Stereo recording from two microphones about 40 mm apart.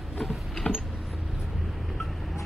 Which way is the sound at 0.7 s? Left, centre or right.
Left.